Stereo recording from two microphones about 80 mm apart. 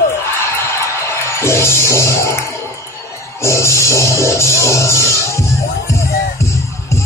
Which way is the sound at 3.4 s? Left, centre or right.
Left.